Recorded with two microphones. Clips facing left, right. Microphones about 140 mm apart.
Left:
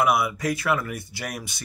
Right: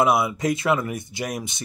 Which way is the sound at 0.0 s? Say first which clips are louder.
Right 2 dB; 25° right (ahead or behind).